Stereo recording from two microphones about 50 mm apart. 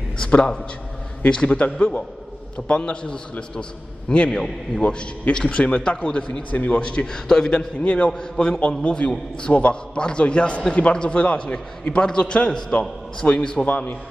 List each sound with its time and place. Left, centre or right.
1.2 s a man's voice: centre
13.7 s a man's voice: left